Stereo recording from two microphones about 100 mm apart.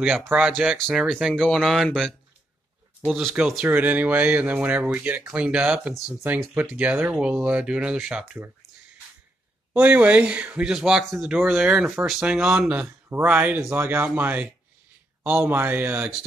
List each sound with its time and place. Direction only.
0.3 s speech: 10° right (ahead or behind)
3.1 s speech: centre (ahead or behind)
3.6 s speech: 15° right (ahead or behind)
9.8 s speech: 15° right (ahead or behind)